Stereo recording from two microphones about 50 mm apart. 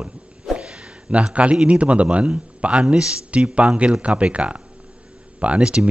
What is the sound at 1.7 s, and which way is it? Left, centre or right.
Speech, right.